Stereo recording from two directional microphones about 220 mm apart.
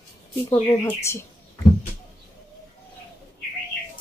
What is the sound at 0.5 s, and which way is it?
Speech, 10° left (ahead or behind).